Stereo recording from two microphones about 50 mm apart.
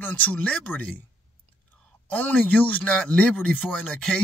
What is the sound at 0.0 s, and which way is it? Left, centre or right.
Speech, left.